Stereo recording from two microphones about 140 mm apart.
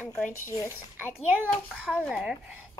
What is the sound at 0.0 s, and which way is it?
Speech, 15° left (ahead or behind).